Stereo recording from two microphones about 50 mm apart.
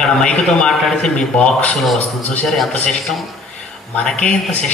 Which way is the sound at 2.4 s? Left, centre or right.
Centre.